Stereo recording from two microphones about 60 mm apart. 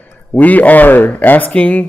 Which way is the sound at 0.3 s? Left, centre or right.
Left.